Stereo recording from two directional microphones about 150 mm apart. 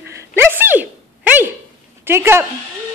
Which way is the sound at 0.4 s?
15° right (ahead or behind).